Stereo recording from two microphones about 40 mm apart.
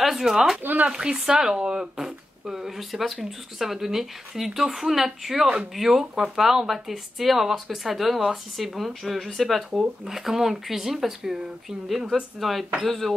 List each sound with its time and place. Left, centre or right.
0.0 s speech: centre
0.6 s speech: right
0.8 s speech: centre
12.4 s speech: centre